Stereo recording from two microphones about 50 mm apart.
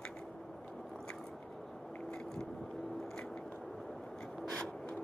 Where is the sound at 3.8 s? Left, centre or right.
Centre.